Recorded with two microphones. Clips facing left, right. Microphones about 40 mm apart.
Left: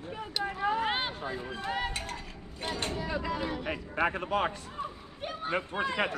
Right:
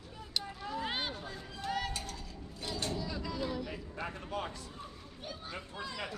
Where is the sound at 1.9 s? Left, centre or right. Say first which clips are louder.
Left 5 dB; left.